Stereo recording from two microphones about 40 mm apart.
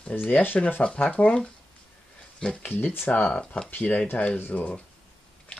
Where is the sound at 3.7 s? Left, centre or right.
Left.